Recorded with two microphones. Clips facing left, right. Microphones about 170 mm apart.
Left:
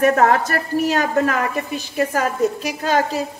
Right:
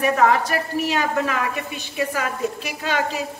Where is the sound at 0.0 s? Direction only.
45° left (ahead or behind).